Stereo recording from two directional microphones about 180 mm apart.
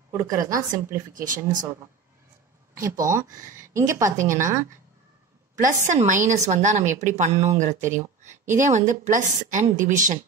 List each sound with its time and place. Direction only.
0.1 s a woman's voice: 15° right (ahead or behind)
1.1 s a woman's voice: 50° right (ahead or behind)
2.7 s a woman's voice: 15° right (ahead or behind)
5.6 s a woman's voice: 45° right (ahead or behind)